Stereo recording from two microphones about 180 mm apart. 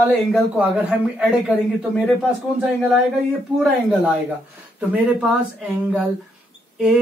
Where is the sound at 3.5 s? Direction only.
5° right (ahead or behind).